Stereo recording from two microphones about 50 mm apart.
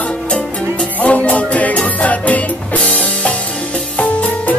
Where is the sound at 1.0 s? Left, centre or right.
Left.